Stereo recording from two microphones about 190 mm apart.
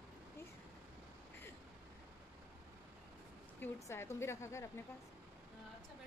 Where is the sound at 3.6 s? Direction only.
15° left (ahead or behind).